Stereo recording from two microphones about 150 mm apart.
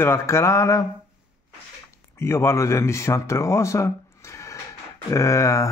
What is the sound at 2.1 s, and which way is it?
Speech, 15° left (ahead or behind).